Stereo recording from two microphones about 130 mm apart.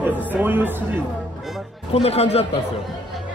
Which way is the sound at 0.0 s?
15° right (ahead or behind).